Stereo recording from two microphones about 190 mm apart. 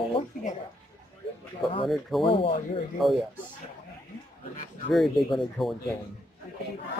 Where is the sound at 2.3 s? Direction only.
30° left (ahead or behind).